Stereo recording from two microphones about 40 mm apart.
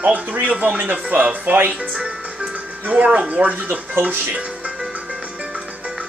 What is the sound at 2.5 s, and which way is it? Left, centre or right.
Music, right.